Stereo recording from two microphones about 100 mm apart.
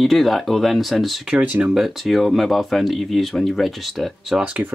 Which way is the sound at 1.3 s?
15° right (ahead or behind).